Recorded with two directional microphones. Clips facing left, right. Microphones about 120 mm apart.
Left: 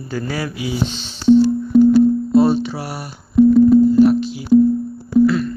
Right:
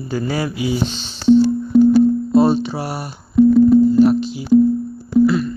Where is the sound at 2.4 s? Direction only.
25° right (ahead or behind).